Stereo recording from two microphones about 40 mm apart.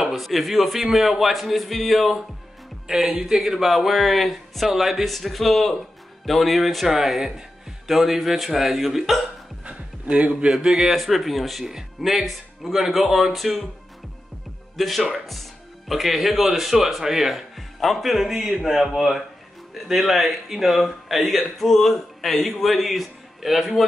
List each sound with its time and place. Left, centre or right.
0.1 s speech: centre
9.7 s a sound: right
10.5 s speech: centre
11.6 s speech: centre
14.8 s speech: centre